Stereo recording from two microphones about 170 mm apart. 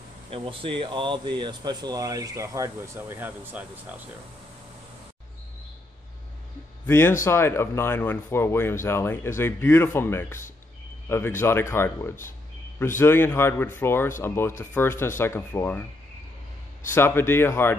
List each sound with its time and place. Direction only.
0.3 s speech: 30° right (ahead or behind); by 4.0 s 10° right (ahead or behind)
6.9 s speech: 15° left (ahead or behind)
16.9 s speech: 15° left (ahead or behind)